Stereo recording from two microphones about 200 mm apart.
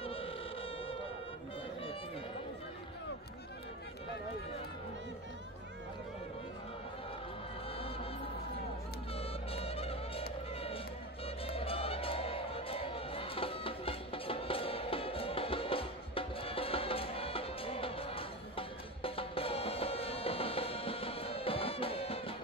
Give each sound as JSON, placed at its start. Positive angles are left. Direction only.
{"t": 0.0, "sound": "a sound", "side_deg": 30}
{"t": 7.7, "sound": "music", "side_deg": 30}
{"t": 9.1, "sound": "music", "side_deg": 30}
{"t": 11.2, "sound": "music", "side_deg": 30}